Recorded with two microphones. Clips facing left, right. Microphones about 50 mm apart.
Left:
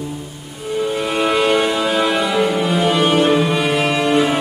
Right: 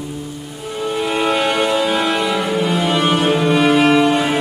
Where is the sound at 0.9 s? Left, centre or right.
Centre.